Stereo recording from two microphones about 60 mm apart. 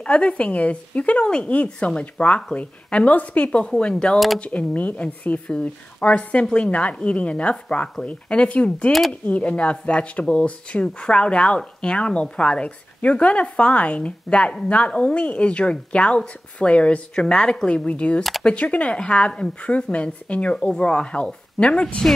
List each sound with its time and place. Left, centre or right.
0.0 s a woman's voice: centre
17.6 s a woman's voice: centre